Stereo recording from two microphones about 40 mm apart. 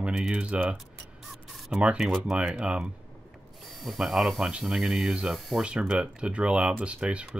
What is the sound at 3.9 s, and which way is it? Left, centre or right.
Speech, centre.